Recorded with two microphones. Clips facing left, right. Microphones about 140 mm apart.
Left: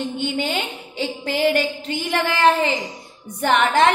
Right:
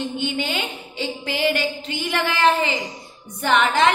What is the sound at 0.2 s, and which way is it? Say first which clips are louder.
A woman's voice: left 2 dB; 45° left (ahead or behind).